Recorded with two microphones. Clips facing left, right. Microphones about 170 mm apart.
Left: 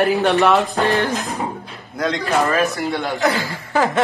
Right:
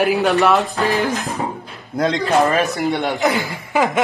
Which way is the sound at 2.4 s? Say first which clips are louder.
Right 1 dB; 20° right (ahead or behind).